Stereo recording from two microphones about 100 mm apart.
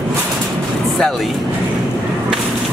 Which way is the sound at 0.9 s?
5° left (ahead or behind).